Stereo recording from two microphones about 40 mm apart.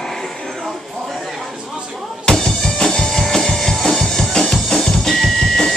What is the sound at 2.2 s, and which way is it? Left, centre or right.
Music, centre.